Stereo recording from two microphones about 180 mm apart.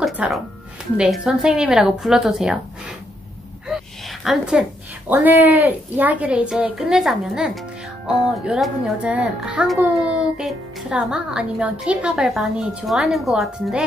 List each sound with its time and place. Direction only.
0.0 s music: centre (ahead or behind)
0.9 s a child's voice: 5° right (ahead or behind)
3.7 s a sound: centre (ahead or behind)
5.1 s a woman's voice: 10° right (ahead or behind)